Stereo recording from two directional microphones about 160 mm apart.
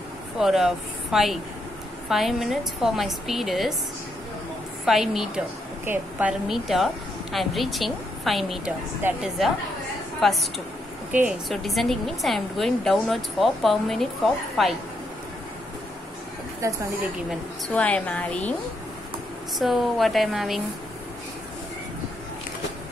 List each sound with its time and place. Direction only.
0.4 s a woman's voice: centre (ahead or behind)
4.8 s a woman's voice: centre (ahead or behind)
16.6 s speech: 20° right (ahead or behind)
17.7 s speech: 10° left (ahead or behind)
19.6 s a woman's voice: centre (ahead or behind)